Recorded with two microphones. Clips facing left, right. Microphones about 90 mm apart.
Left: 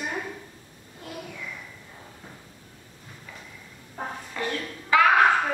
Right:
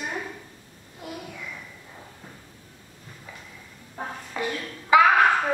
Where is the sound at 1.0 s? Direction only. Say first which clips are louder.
Right 3 dB; 15° right (ahead or behind).